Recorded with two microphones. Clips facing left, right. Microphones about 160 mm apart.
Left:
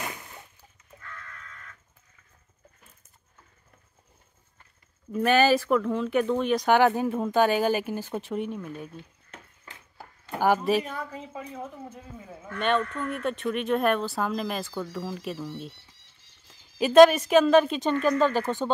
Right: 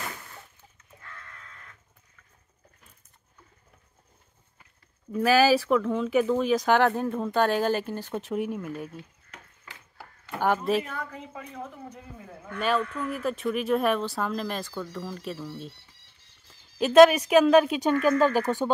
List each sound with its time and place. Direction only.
1.0 s crow: 30° right (ahead or behind)
5.1 s speech: 5° right (ahead or behind)
9.3 s a sound: 20° left (ahead or behind)
10.4 s speech: centre (ahead or behind)
10.9 s a woman's voice: 15° left (ahead or behind); by 17.9 s 5° right (ahead or behind)
18.4 s speech: 20° left (ahead or behind)